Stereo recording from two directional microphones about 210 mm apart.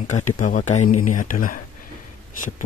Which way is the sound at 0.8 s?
90° left.